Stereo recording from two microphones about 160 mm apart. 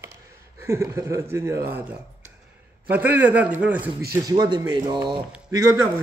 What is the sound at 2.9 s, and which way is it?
Speech, 10° right (ahead or behind).